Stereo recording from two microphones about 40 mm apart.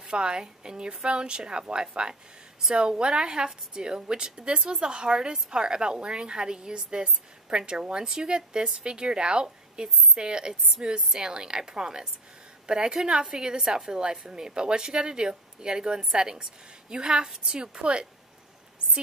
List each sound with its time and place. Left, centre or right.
0.0 s a woman's voice: right